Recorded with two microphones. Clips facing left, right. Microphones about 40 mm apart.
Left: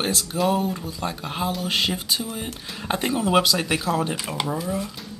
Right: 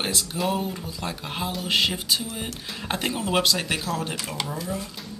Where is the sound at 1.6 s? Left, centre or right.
Centre.